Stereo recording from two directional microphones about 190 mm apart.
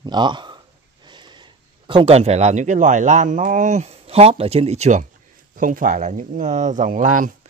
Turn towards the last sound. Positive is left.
turn(degrees=-45)  # may be behind; listen again after turning